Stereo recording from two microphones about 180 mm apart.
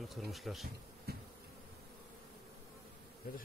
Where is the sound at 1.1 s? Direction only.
60° right (ahead or behind).